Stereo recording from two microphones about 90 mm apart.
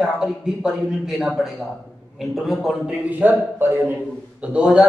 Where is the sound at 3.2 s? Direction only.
20° right (ahead or behind).